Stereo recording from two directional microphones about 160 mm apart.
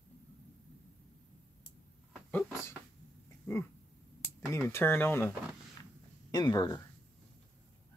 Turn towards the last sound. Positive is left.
turn(degrees=25)  # may be behind; listen again after turning